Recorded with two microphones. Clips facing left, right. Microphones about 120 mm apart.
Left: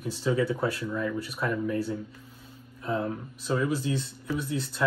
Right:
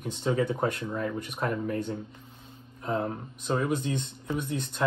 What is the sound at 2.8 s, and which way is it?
Speech, 35° right (ahead or behind).